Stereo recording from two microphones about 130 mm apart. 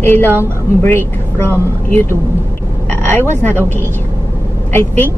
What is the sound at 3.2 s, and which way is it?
Speech, 15° left (ahead or behind).